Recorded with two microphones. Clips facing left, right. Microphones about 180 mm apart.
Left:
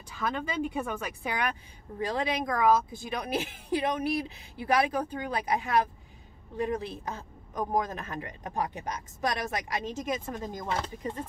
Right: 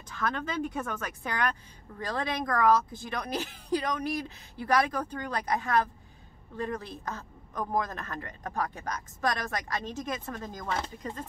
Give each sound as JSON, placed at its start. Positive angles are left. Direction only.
{"t": 0.1, "sound": "a man's voice", "side_deg": 10}